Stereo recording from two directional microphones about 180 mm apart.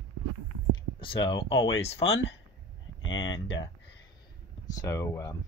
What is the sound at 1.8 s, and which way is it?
Speech, 35° left (ahead or behind).